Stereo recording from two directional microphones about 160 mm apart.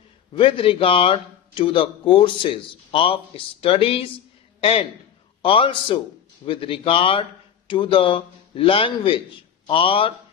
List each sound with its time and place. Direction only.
0.3 s a man's voice: 35° left (ahead or behind)